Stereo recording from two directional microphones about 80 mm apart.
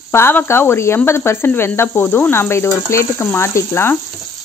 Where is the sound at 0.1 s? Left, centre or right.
Left.